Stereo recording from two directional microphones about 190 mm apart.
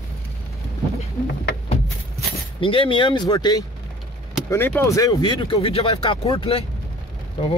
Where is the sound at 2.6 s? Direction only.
25° left (ahead or behind).